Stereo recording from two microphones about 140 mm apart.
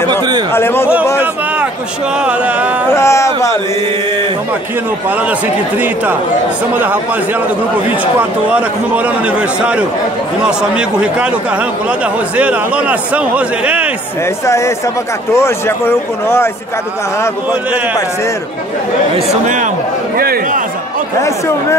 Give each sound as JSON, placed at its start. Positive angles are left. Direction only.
{"t": 0.5, "sound": "speech", "side_deg": 15}
{"t": 1.1, "sound": "a sound", "side_deg": -10}
{"t": 2.2, "sound": "a man's voice", "side_deg": -10}
{"t": 2.9, "sound": "speech", "side_deg": 20}
{"t": 8.2, "sound": "a man's voice", "side_deg": -10}
{"t": 12.4, "sound": "a man's voice", "side_deg": -10}
{"t": 14.4, "sound": "speech", "side_deg": 20}
{"t": 19.4, "sound": "speech", "side_deg": -65}
{"t": 20.2, "sound": "a man's voice", "side_deg": -90}